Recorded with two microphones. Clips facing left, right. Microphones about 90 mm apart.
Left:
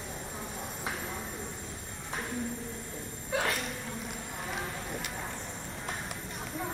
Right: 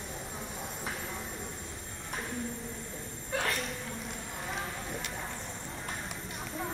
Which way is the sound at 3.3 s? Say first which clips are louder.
Left 2 dB; 5° left (ahead or behind).